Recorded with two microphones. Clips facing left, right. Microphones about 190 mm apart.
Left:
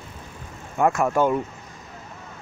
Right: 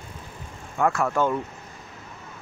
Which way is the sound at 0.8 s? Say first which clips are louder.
Left 3 dB; 20° left (ahead or behind).